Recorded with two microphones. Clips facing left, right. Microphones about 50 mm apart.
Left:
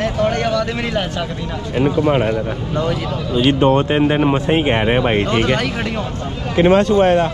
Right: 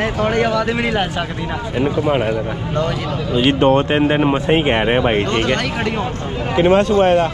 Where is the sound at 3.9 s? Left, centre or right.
Right.